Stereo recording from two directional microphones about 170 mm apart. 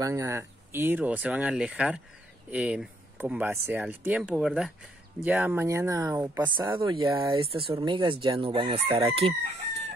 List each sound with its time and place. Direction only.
0.0 s speech: 15° right (ahead or behind)
6.5 s chicken: 30° right (ahead or behind)
8.8 s chicken: 20° right (ahead or behind)
9.1 s chicken: 40° right (ahead or behind)